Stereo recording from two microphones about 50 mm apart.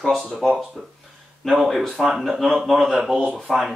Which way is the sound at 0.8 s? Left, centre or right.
Centre.